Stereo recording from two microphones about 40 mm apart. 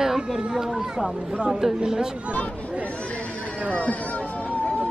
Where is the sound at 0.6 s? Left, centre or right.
Centre.